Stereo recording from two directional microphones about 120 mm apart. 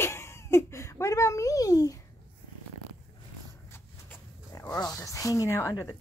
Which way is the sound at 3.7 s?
20° left (ahead or behind).